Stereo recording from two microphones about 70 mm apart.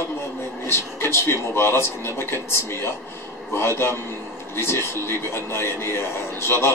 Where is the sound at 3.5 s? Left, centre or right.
Left.